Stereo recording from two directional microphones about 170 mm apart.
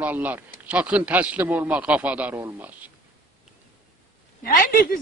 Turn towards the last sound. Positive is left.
turn(degrees=60)  # may be behind; listen again after turning